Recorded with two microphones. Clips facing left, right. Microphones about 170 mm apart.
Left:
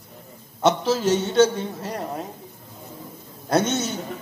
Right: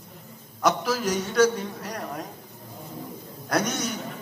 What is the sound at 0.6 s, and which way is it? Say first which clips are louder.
A man's voice: left 4 dB; 25° left (ahead or behind).